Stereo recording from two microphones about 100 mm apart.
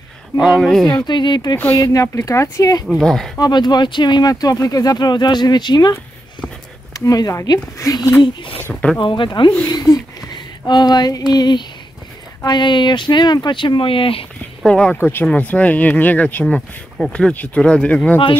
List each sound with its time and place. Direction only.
0.6 s speech: 5° left (ahead or behind)
1.0 s speech: 50° left (ahead or behind)
1.8 s speech: 35° left (ahead or behind)
3.0 s speech: 5° left (ahead or behind)
3.3 s speech: 45° left (ahead or behind)
7.1 s speech: 35° left (ahead or behind)
8.9 s speech: 55° left (ahead or behind)
9.7 s speech: 45° left (ahead or behind)
10.3 s a sound: 50° left (ahead or behind)
11.3 s speech: 50° left (ahead or behind); by 14.2 s 65° left (ahead or behind)
14.7 s speech: 10° left (ahead or behind)